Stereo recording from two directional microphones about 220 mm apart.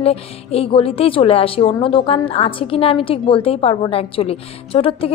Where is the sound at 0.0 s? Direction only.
25° left (ahead or behind).